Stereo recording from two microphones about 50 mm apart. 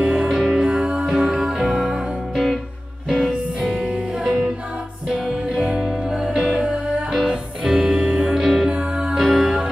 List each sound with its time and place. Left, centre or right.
0.0 s music: right
0.3 s music: centre
3.7 s music: right
5.5 s music: centre
7.7 s music: right
8.6 s music: right
9.1 s music: centre